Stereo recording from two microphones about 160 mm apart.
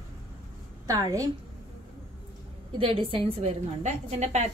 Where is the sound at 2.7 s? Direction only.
35° right (ahead or behind).